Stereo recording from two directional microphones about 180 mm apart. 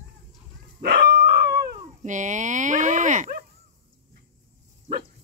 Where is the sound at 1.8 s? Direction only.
45° right (ahead or behind).